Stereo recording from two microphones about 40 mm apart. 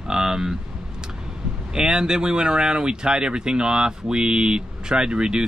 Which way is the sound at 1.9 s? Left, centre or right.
Centre.